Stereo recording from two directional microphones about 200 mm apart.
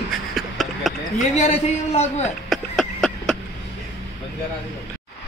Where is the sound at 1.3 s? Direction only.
35° left (ahead or behind).